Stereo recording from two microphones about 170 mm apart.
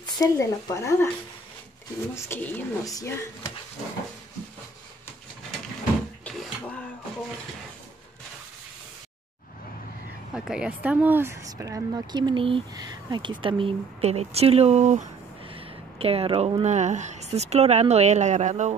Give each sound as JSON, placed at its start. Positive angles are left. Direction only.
{"t": 0.0, "sound": "speech", "side_deg": 20}
{"t": 2.1, "sound": "speech", "side_deg": 15}
{"t": 10.3, "sound": "speech", "side_deg": -5}
{"t": 15.4, "sound": "speech", "side_deg": -35}